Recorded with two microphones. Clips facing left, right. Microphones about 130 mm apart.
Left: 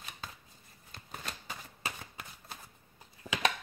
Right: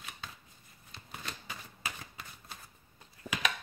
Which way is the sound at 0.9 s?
45° left (ahead or behind).